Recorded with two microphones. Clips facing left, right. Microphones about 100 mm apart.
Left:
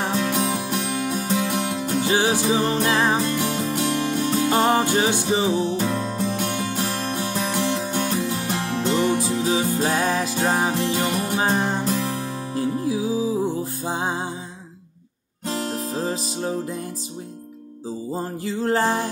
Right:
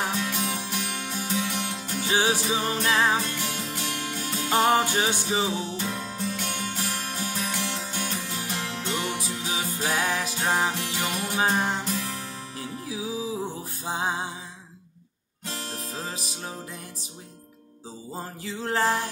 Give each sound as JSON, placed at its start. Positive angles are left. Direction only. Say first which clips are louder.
{"t": 0.0, "sound": "music", "louder": "left 5 dB", "side_deg": 30}
{"t": 0.3, "sound": "music", "louder": "left 7 dB", "side_deg": 40}
{"t": 6.3, "sound": "music", "louder": "left 7 dB", "side_deg": 45}
{"t": 15.5, "sound": "music", "louder": "left 9 dB", "side_deg": 35}
{"t": 18.1, "sound": "music", "louder": "left 6 dB", "side_deg": 35}